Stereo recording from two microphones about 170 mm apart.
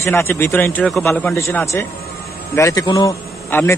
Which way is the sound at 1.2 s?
15° left (ahead or behind).